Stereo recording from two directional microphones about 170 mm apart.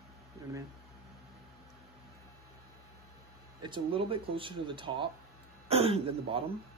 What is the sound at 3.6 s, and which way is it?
Speech, 30° right (ahead or behind).